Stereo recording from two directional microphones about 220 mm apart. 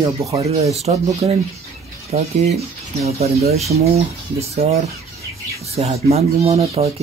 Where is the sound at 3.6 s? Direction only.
30° right (ahead or behind).